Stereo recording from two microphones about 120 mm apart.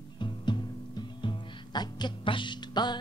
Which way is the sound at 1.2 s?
35° left (ahead or behind).